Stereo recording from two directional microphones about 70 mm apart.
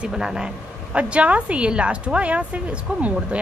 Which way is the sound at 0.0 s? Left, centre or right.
Centre.